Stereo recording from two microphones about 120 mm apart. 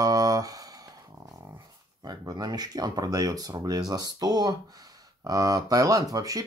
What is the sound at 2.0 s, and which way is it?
Speech, 35° right (ahead or behind).